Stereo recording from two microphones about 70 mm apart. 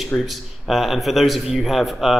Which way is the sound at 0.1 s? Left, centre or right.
Left.